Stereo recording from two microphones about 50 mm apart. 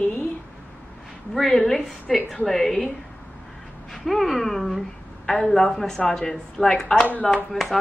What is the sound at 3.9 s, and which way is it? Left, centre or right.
A woman's voice, centre.